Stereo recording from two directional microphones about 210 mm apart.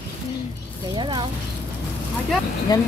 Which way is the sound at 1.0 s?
20° right (ahead or behind).